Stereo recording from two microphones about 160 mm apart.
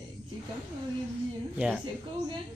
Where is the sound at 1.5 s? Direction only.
5° right (ahead or behind).